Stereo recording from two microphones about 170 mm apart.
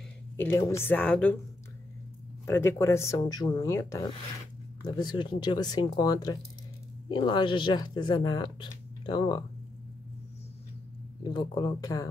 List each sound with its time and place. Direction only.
0.4 s speech: 15° left (ahead or behind)
2.4 s speech: 15° left (ahead or behind)
11.2 s speech: 25° left (ahead or behind)